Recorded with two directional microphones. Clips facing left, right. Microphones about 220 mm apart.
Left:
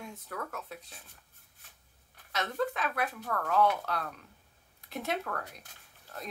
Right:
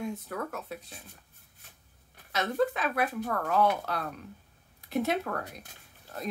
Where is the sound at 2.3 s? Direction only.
10° right (ahead or behind).